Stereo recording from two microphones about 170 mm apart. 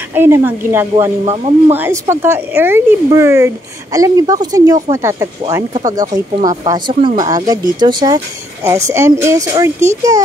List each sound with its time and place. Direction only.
0.1 s speech: 15° right (ahead or behind)
1.2 s speech: 35° right (ahead or behind)
1.7 s a woman's voice: 15° right (ahead or behind)